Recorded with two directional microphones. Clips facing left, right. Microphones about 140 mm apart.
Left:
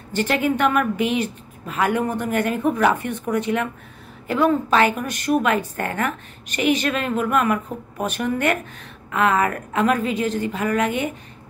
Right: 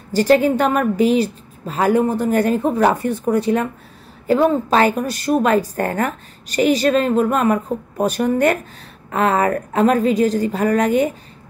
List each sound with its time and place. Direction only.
0.1 s a woman's voice: 35° right (ahead or behind)